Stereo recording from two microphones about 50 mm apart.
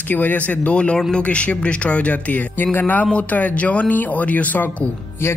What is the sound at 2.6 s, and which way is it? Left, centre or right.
A man's voice, left.